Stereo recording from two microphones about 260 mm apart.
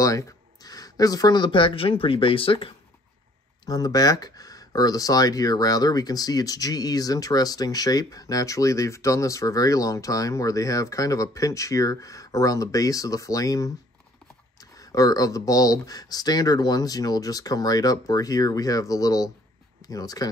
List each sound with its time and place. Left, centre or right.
0.0 s speech: centre